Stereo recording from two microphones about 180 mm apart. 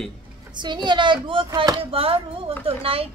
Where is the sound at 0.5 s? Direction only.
25° right (ahead or behind).